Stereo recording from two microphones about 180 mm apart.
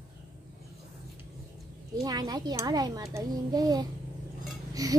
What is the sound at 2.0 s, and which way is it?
A child's voice, 20° right (ahead or behind).